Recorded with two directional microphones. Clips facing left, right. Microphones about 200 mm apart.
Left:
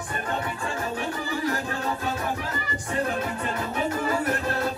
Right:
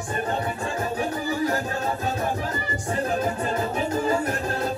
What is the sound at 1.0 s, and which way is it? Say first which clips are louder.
Music: right 4 dB; 45° right (ahead or behind).